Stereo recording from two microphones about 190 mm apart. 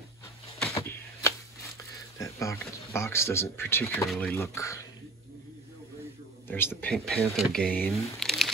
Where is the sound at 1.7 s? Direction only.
15° left (ahead or behind).